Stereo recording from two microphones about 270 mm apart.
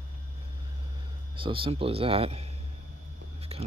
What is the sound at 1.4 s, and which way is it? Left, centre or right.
Speech, centre.